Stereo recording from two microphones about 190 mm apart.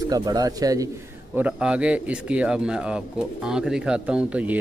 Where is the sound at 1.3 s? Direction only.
5° right (ahead or behind).